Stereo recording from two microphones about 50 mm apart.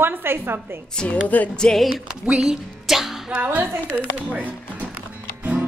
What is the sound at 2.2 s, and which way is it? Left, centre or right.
Speech, centre.